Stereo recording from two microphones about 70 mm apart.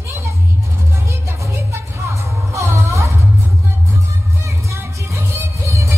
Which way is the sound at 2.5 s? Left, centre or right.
Right.